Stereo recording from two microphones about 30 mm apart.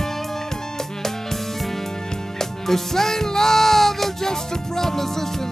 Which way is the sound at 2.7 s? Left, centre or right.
Centre.